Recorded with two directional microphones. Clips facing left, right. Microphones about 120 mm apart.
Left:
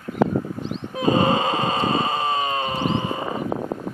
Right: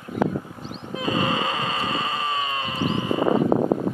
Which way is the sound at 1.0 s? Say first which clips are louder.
Left 5 dB; 35° left (ahead or behind).